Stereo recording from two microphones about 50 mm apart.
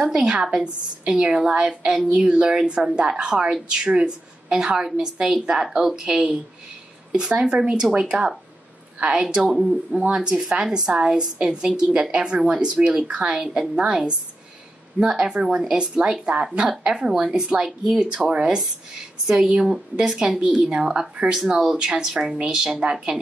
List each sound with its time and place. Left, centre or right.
0.1 s a woman's voice: centre
6.0 s a woman's voice: right; by 9.8 s centre
9.9 s a woman's voice: centre
13.4 s a woman's voice: centre